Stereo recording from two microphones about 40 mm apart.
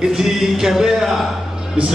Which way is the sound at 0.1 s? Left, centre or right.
Centre.